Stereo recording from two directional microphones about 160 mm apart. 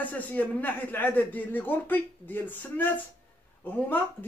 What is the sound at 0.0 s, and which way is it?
Speech, 10° left (ahead or behind).